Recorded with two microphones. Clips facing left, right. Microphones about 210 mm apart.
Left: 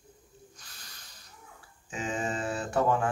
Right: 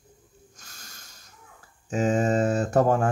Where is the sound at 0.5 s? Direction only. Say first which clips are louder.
Right 3 dB; 45° right (ahead or behind).